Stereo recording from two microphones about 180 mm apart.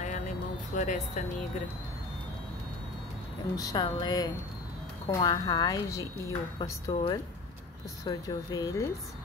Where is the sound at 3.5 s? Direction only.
20° left (ahead or behind).